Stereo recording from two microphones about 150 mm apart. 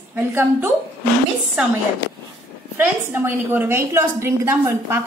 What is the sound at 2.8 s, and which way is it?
A woman's voice, 15° right (ahead or behind).